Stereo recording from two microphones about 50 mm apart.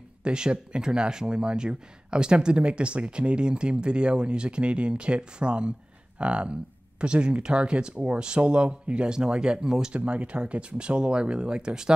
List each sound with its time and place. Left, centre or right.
0.2 s speech: centre
9.9 s speech: right